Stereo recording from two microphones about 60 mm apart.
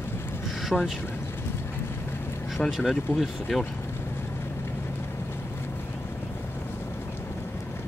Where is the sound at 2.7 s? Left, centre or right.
Centre.